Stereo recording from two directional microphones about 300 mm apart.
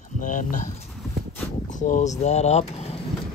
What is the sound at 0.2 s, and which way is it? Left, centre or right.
Speech, left.